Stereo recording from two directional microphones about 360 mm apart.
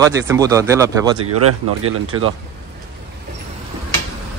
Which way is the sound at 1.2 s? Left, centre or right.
Right.